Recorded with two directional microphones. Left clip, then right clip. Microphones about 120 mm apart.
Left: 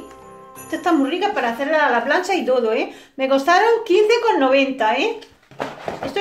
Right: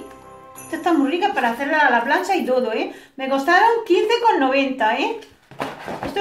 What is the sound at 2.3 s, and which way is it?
A woman's voice, 65° left (ahead or behind).